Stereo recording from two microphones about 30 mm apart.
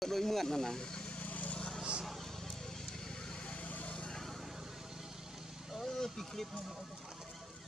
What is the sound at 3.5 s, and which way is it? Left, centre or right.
Vehicle, left.